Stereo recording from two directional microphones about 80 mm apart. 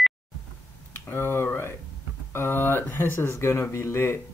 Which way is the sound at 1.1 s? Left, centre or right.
Left.